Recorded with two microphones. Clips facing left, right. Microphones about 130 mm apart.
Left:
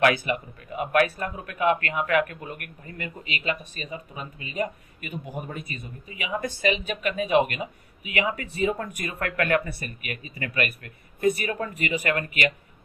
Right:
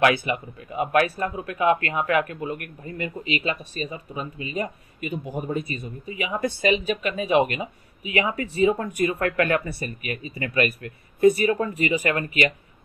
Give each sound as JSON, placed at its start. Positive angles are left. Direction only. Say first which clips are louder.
{"t": 0.0, "sound": "speech", "louder": "right 1 dB", "side_deg": -35}